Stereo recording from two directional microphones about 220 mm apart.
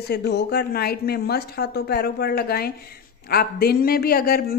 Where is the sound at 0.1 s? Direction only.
50° left (ahead or behind).